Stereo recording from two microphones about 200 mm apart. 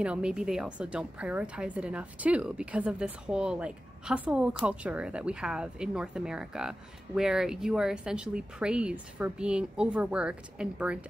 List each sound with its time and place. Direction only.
0.0 s a woman's voice: 5° right (ahead or behind)